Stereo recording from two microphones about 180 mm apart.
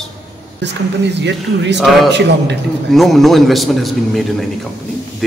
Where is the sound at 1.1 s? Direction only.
75° right (ahead or behind).